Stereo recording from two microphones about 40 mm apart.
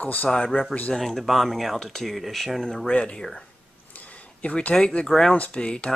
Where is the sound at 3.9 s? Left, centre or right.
Left.